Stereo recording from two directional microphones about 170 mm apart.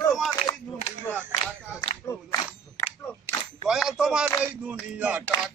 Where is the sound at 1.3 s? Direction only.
25° left (ahead or behind).